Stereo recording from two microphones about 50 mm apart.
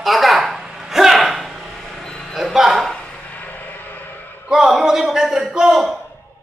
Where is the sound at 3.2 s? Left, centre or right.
Left.